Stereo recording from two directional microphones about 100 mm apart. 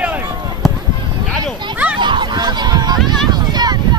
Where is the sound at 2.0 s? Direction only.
50° right (ahead or behind).